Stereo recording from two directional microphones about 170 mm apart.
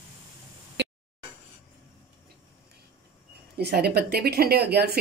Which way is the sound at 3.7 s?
70° right (ahead or behind).